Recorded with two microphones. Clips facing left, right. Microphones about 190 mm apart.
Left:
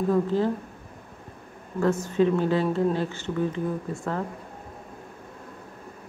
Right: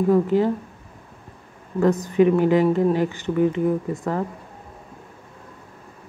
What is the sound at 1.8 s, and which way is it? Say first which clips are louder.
Speech: right 5 dB; 15° right (ahead or behind).